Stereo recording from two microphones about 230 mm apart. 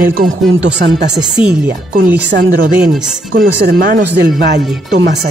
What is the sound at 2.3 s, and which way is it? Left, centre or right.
Speech, right.